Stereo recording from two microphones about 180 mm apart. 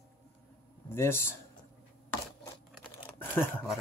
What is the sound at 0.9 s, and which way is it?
Speech, 15° left (ahead or behind).